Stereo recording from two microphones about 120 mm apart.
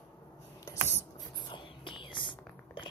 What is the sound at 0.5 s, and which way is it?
Mechanisms, 25° left (ahead or behind).